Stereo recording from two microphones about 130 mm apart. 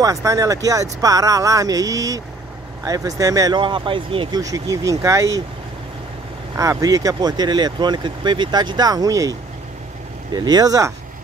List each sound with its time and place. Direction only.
0.0 s speech: 25° right (ahead or behind)
4.4 s speech: 25° right (ahead or behind)
6.5 s speech: 25° right (ahead or behind)